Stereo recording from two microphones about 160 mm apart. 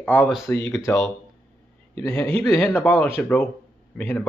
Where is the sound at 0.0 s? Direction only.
10° left (ahead or behind).